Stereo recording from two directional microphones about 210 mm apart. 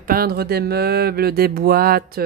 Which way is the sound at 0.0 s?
45° right (ahead or behind).